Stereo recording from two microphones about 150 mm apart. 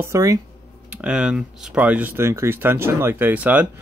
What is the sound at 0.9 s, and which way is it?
Speech, 5° right (ahead or behind).